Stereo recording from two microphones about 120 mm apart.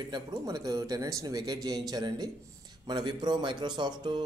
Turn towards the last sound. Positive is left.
turn(degrees=-40)  # may be behind; listen again after turning